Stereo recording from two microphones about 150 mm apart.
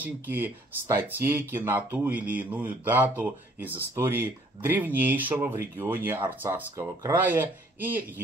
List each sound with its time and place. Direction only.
0.0 s speech: 15° right (ahead or behind)